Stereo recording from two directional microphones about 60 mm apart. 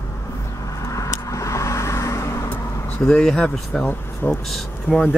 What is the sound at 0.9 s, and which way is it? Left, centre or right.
Vehicle, left.